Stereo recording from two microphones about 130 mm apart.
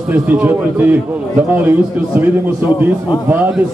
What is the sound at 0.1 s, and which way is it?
A man's voice, 15° right (ahead or behind).